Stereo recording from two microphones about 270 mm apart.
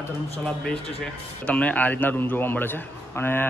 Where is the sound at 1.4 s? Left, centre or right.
Centre.